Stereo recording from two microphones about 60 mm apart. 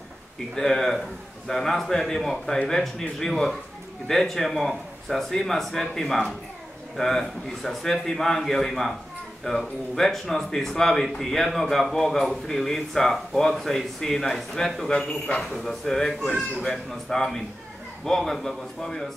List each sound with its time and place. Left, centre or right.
0.6 s a man's voice: centre
15.5 s speech: centre
16.6 s speech: centre